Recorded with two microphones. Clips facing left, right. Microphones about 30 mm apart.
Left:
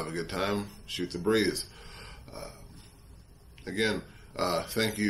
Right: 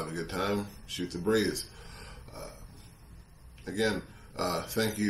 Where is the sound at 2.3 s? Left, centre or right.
Left.